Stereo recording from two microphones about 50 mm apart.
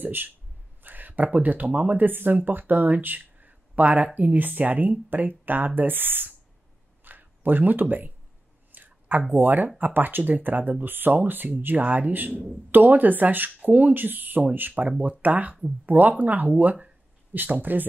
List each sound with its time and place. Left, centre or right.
0.0 s speech: right
8.7 s a sound: right
9.3 s speech: right